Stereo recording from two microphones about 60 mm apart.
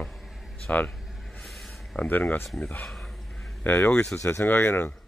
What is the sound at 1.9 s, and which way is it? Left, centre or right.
Speech, left.